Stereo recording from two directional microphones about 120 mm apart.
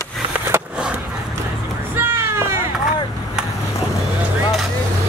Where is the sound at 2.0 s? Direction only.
20° right (ahead or behind).